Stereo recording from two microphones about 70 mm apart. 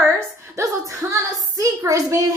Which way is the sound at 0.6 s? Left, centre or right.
Right.